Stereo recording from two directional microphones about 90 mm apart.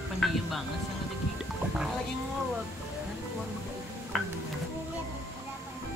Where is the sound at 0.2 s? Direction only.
Centre (ahead or behind).